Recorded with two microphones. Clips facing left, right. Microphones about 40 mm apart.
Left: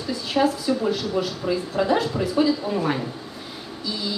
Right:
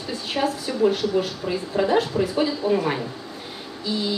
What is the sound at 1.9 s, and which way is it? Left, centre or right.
Speech, right.